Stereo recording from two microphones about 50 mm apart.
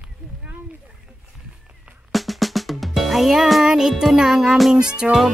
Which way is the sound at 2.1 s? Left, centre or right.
Centre.